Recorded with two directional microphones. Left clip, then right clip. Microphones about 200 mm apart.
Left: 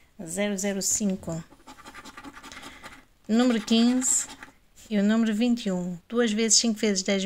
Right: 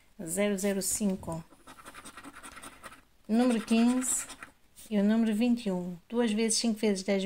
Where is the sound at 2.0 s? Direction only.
25° left (ahead or behind).